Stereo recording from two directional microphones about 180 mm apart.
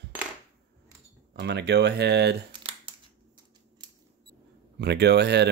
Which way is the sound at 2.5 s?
30° right (ahead or behind).